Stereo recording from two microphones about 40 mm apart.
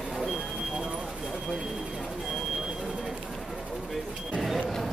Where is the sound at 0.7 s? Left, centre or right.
Centre.